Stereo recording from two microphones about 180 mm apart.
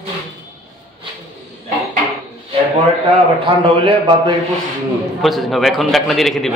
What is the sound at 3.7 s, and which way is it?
Speech, 30° right (ahead or behind).